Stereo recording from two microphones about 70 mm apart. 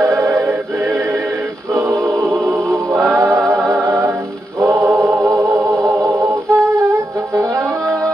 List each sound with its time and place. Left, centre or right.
0.0 s music: right
3.0 s a capella: right
4.8 s music: right
6.0 s humming: right